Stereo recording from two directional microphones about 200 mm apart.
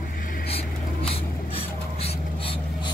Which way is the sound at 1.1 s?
30° left (ahead or behind).